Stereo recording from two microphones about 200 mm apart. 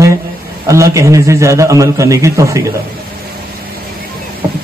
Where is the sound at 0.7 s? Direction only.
15° right (ahead or behind).